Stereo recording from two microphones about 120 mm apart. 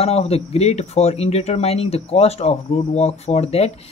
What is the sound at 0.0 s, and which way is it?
Speech, 55° left (ahead or behind).